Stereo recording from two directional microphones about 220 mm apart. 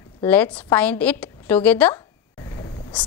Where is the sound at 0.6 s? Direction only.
5° left (ahead or behind).